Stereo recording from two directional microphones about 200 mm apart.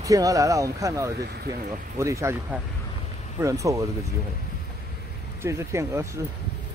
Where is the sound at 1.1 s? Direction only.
55° right (ahead or behind).